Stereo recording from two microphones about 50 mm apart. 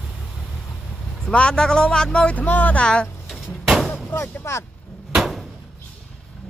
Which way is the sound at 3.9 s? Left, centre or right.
Left.